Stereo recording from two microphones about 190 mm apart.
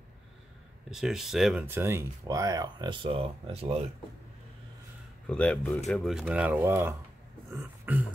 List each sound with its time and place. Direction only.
0.8 s speech: centre (ahead or behind); by 3.9 s 30° right (ahead or behind)
5.2 s speech: 5° left (ahead or behind); by 7.0 s 15° right (ahead or behind)
7.5 s a sound: 10° right (ahead or behind)